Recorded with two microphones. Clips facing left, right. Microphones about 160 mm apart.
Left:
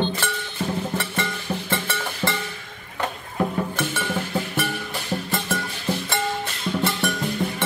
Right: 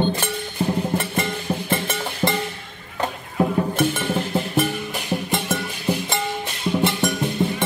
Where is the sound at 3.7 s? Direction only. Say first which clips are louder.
Right 5 dB; 20° right (ahead or behind).